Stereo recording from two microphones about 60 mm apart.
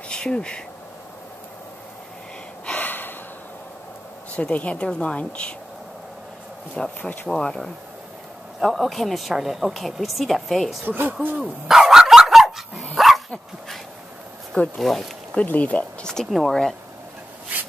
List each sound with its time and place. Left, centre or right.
0.1 s speech: centre
2.6 s gasp: left
4.4 s a woman's voice: left
6.7 s speech: centre
8.5 s a woman's voice: centre
10.9 s speech: right
11.6 s dog: centre
14.8 s a woman's voice: centre
15.3 s a woman's voice: left
16.3 s a woman's voice: centre